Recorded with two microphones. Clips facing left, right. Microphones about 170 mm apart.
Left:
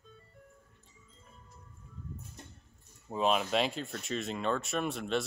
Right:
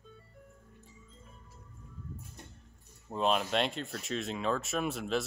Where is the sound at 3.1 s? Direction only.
Centre (ahead or behind).